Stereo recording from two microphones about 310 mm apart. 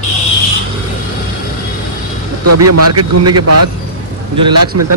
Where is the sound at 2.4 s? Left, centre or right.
Right.